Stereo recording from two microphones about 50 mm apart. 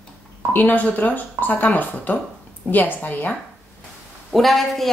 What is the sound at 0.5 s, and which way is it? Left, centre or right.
Speech, left.